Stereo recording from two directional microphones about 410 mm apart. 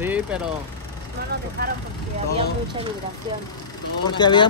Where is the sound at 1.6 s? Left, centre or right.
Right.